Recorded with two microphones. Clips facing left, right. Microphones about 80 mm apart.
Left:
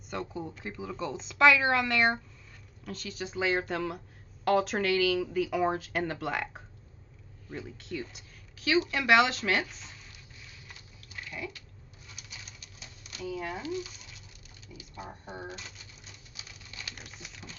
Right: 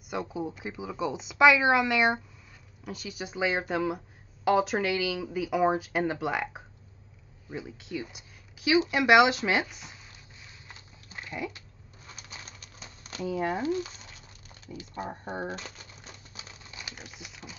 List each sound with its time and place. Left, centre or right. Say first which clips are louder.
0.1 s speech: right 4 dB; centre
10.7 s dog: right 2 dB; right
12.1 s pigeon: right 4 dB; right
13.2 s speech: right 6 dB; right
14.7 s typewriter: right 7 dB; right
16.9 s a sound: right 2 dB; centre